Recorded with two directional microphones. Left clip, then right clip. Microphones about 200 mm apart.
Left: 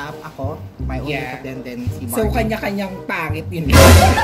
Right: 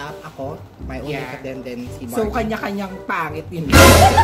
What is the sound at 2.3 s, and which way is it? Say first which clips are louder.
Speech: left 2 dB; 20° left (ahead or behind).